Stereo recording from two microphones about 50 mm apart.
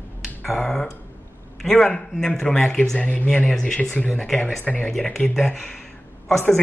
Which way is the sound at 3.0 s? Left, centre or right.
Left.